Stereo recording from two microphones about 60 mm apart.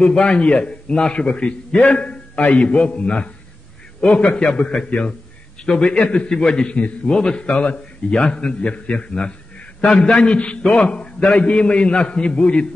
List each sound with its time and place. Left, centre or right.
0.0 s a man's voice: centre